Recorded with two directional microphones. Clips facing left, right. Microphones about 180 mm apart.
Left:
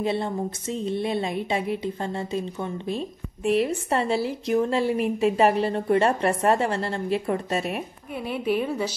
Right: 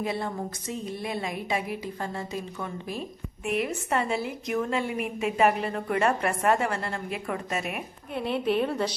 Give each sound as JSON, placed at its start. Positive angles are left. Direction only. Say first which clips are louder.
{"t": 0.0, "sound": "speech", "louder": "left 5 dB", "side_deg": 25}
{"t": 8.1, "sound": "a woman's voice", "louder": "even", "side_deg": 5}